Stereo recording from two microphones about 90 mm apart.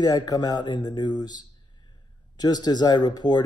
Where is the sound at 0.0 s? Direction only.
50° left (ahead or behind).